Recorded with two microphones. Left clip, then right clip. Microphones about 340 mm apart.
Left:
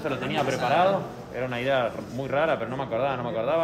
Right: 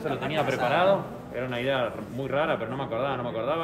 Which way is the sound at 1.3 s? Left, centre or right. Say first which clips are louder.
Left 2 dB; centre.